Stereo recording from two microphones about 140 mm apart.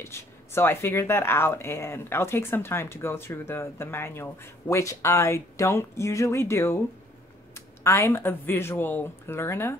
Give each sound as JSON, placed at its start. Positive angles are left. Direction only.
{"t": 0.0, "sound": "speech", "side_deg": 20}